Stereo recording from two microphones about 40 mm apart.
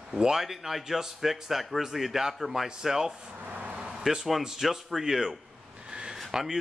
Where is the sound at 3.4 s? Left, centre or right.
Right.